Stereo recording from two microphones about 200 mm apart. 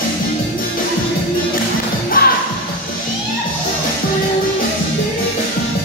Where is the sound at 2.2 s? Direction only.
45° left (ahead or behind).